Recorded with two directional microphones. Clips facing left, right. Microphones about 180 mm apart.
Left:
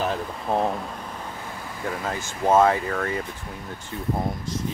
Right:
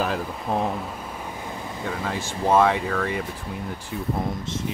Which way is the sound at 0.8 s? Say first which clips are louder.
Right 1 dB; 5° right (ahead or behind).